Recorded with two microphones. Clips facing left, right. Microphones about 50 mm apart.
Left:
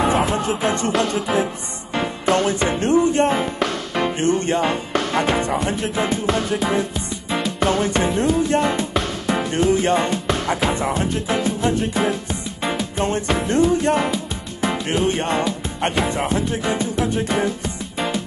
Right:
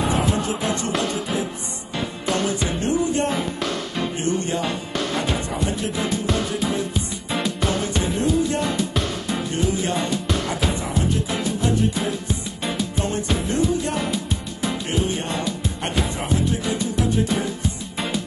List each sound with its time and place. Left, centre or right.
0.0 s music: left
3.3 s music: left
3.9 s music: left
5.9 s music: left
7.2 s music: centre
7.6 s music: left
8.5 s music: left
9.3 s music: left
11.3 s music: left
16.6 s music: left